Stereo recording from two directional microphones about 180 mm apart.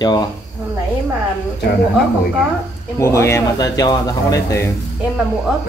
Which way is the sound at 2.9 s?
15° left (ahead or behind).